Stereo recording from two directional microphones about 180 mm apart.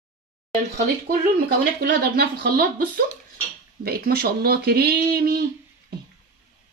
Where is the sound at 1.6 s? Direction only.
65° right (ahead or behind).